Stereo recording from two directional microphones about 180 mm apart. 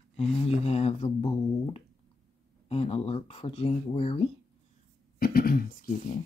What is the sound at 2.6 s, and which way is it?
Speech, 35° left (ahead or behind).